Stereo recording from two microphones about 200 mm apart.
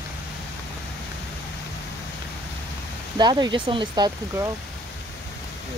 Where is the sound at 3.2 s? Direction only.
20° right (ahead or behind).